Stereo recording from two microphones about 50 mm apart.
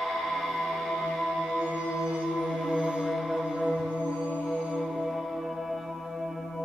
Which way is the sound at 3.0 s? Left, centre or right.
Centre.